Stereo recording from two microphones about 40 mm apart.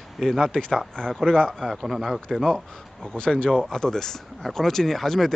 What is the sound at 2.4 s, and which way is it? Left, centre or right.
Speech, centre.